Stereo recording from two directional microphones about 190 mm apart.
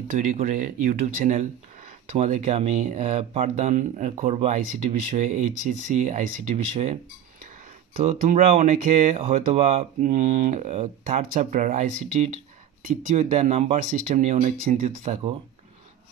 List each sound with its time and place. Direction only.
0.1 s speech: 45° right (ahead or behind)
8.0 s speech: 35° right (ahead or behind)